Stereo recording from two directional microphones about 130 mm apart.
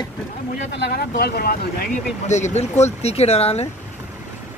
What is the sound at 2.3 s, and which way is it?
Speech, 65° left (ahead or behind).